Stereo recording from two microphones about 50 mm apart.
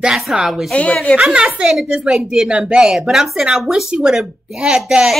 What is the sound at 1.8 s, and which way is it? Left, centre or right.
Speech, centre.